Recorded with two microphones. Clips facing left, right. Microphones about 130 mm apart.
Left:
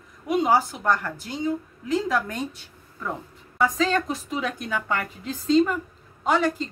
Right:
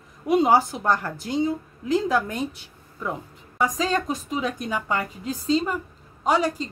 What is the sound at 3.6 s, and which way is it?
A woman's voice, 15° right (ahead or behind).